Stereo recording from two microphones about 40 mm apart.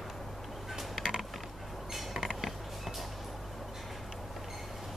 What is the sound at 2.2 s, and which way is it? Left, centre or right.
Creak, centre.